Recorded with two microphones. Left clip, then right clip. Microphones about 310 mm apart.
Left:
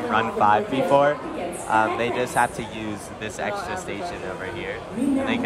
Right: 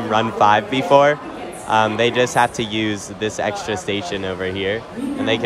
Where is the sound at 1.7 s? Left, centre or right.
Centre.